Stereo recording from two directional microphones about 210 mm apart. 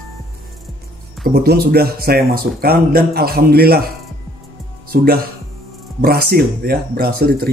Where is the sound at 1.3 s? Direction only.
45° right (ahead or behind).